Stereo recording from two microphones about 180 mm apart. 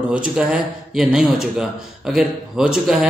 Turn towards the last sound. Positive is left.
turn(degrees=-5)  # may be behind; listen again after turning